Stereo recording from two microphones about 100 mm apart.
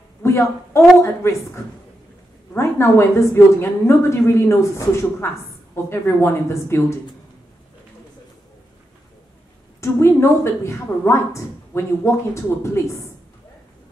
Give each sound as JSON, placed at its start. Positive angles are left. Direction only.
{"t": 0.2, "sound": "a woman's voice", "side_deg": 25}
{"t": 9.8, "sound": "a woman's voice", "side_deg": 25}